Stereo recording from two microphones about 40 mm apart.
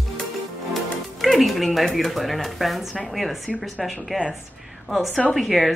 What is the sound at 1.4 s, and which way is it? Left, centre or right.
A woman's voice, centre.